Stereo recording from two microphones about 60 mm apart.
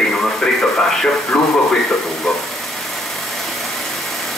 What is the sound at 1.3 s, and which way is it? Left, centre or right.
Speech, centre.